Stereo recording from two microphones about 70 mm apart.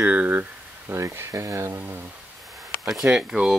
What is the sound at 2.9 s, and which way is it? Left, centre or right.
Speech, centre.